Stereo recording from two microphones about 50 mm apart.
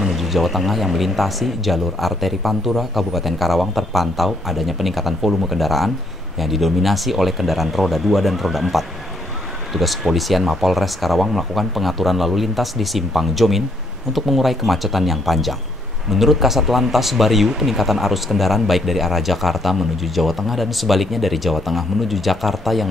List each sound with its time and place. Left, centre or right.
0.0 s speech: centre